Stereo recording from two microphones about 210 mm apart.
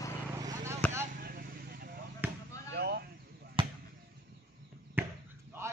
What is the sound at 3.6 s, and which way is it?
Basketball bounce, 25° right (ahead or behind).